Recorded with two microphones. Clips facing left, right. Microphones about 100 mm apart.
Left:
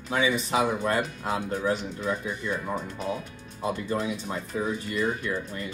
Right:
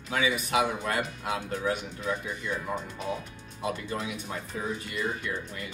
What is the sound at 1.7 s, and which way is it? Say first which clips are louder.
Speech: left 3 dB; centre (ahead or behind).